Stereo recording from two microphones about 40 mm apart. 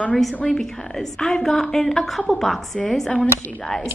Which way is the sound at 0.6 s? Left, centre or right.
Centre.